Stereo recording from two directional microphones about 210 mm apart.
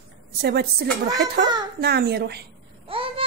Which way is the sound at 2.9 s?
25° right (ahead or behind).